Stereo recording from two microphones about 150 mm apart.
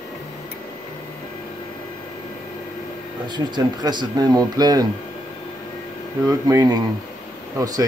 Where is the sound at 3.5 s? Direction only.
30° right (ahead or behind).